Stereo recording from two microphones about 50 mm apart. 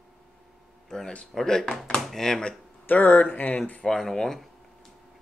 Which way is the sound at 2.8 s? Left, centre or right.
Left.